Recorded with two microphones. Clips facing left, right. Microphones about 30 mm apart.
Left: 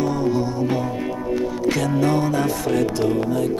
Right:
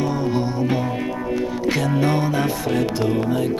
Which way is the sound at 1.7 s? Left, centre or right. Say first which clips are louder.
Even; centre.